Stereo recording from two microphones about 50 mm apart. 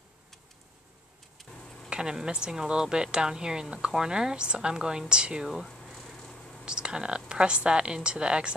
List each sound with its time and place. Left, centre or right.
1.6 s a sound: centre
1.9 s speech: centre
5.5 s speech: centre
5.8 s cat: centre
6.6 s a woman's voice: centre